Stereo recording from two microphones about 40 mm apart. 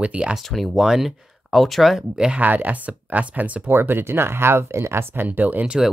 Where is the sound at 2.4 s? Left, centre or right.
Right.